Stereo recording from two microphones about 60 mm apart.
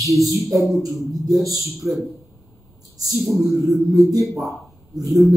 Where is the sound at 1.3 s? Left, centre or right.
Right.